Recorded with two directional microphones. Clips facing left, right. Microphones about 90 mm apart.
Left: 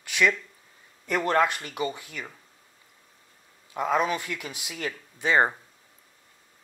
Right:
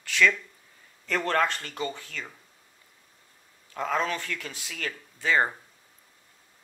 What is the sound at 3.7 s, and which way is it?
Speech, 15° left (ahead or behind).